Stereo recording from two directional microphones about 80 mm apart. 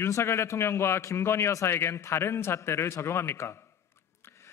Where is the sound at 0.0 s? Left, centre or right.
Left.